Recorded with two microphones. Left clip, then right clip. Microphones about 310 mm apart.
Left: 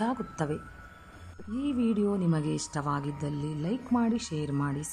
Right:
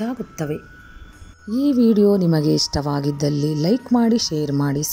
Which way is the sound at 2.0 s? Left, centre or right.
Centre.